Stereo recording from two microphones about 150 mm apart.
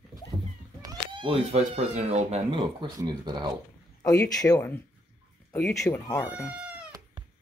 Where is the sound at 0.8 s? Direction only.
30° right (ahead or behind).